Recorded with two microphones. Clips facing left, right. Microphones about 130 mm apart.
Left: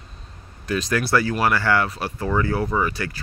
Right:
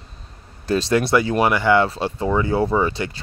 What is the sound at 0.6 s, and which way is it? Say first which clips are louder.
Speech: right 4 dB; 30° right (ahead or behind).